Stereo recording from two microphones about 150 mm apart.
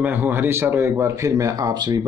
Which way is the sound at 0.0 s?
15° right (ahead or behind).